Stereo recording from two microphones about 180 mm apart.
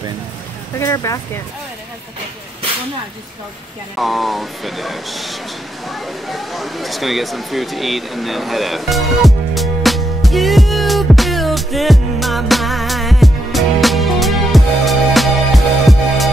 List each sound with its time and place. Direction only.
0.7 s speech: 15° left (ahead or behind)
3.9 s speech: centre (ahead or behind)
5.9 s a sound: centre (ahead or behind)